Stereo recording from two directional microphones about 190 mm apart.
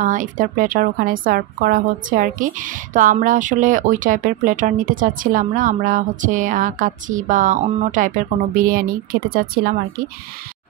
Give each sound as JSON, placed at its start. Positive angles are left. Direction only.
{"t": 0.0, "sound": "a woman's voice", "side_deg": -45}